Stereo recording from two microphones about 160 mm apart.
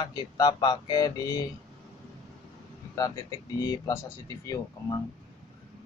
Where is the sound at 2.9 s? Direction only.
20° left (ahead or behind).